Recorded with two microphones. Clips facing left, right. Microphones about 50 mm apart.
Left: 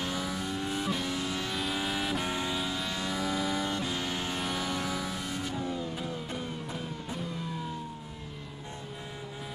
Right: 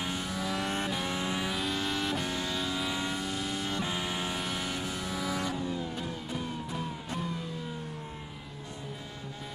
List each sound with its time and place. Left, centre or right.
1.0 s vehicle: centre
1.5 s vehicle: centre
2.8 s vehicle: centre